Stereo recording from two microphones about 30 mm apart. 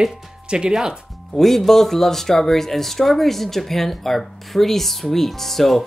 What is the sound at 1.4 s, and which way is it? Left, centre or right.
Speech, centre.